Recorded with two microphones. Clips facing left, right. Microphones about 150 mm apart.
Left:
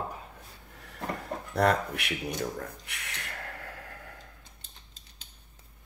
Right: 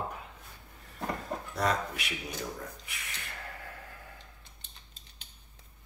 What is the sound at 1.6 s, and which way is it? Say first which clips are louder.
Speech: left 6 dB; 60° left (ahead or behind).